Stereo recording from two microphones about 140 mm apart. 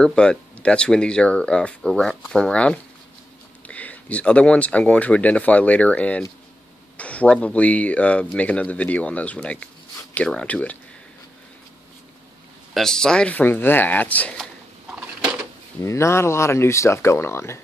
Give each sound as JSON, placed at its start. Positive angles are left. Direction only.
{"t": 0.0, "sound": "speech", "side_deg": 5}
{"t": 12.7, "sound": "speech", "side_deg": 5}
{"t": 15.8, "sound": "speech", "side_deg": 20}